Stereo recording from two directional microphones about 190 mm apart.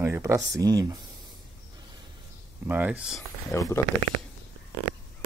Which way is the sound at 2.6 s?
10° right (ahead or behind).